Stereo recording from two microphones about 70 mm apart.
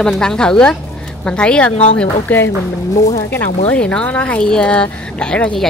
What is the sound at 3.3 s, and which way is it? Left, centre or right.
Speech, left.